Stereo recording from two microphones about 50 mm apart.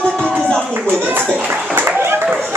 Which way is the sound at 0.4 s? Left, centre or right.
Centre.